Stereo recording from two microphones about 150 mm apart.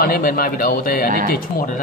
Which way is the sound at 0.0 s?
75° left (ahead or behind).